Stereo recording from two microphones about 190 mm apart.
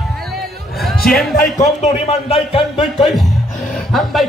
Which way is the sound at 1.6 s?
35° left (ahead or behind).